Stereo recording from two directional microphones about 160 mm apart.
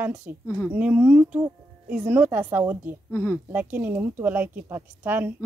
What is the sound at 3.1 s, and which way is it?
Speech, 15° left (ahead or behind).